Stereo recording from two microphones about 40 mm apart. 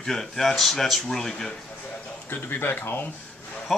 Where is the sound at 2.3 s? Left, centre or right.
Left.